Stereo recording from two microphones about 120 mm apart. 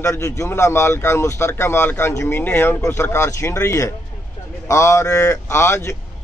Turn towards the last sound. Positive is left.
turn(degrees=20)  # may be behind; listen again after turning